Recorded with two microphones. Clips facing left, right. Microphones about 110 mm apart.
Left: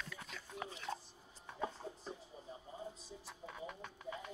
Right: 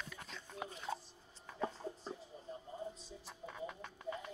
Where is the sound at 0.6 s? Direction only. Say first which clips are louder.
Right 2 dB; centre (ahead or behind).